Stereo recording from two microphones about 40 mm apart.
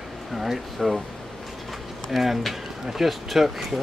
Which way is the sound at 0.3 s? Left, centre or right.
Centre.